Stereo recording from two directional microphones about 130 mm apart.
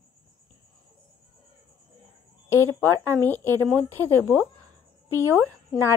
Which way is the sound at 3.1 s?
15° left (ahead or behind).